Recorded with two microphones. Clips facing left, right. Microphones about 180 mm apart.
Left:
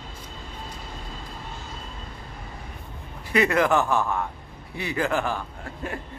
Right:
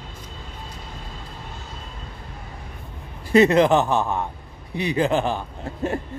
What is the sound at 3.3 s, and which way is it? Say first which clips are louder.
Speech: right 6 dB; 25° right (ahead or behind).